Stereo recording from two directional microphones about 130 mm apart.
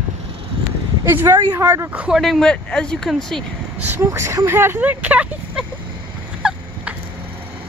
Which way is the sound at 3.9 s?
20° right (ahead or behind).